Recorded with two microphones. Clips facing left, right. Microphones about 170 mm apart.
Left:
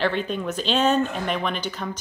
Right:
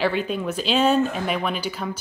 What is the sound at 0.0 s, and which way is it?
Speech, 5° right (ahead or behind).